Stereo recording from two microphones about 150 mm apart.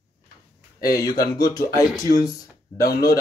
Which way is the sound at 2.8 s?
80° left.